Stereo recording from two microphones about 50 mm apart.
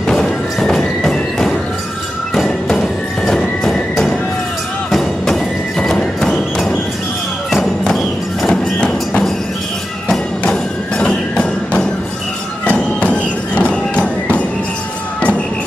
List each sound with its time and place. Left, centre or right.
0.1 s music: centre
2.7 s music: centre
7.5 s music: centre
10.0 s music: centre
12.7 s music: left